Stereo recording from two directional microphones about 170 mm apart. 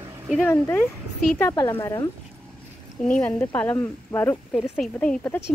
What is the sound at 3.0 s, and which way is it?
Speech, 5° left (ahead or behind).